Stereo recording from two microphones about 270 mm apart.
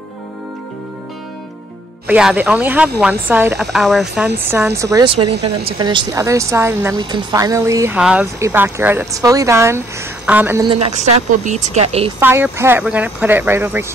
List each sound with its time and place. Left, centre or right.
2.0 s speech: centre; by 12.1 s right
12.2 s speech: centre